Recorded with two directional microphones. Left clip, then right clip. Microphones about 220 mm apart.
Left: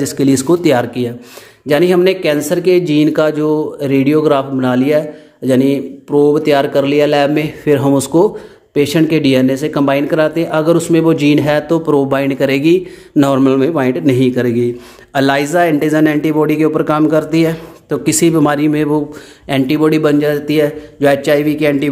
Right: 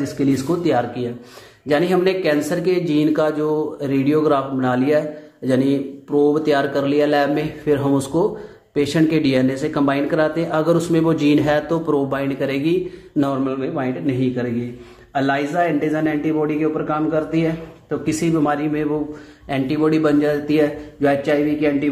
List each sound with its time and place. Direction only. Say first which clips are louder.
0.0 s a man's voice: left 7 dB; 40° left (ahead or behind)